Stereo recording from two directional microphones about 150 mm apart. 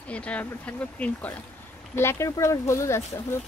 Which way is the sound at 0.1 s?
10° left (ahead or behind).